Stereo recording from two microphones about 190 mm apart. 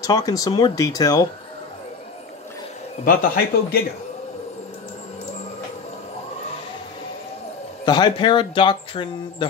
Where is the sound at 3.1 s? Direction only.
50° left (ahead or behind).